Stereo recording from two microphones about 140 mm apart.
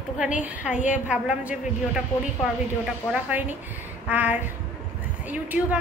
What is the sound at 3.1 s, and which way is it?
A woman's voice, 10° right (ahead or behind).